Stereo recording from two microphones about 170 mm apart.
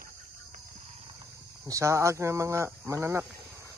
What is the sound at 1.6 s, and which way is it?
Speech, 15° right (ahead or behind).